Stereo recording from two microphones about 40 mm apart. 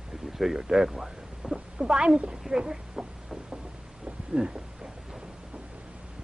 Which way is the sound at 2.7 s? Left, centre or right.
Centre.